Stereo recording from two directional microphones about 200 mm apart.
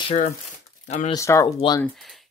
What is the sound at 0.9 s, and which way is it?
Speech, 35° left (ahead or behind).